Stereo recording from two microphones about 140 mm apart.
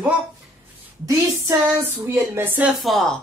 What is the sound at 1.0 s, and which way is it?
Speech, 20° right (ahead or behind).